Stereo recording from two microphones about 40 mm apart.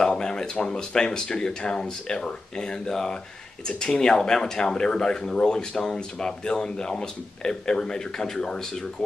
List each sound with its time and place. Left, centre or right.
0.0 s speech: centre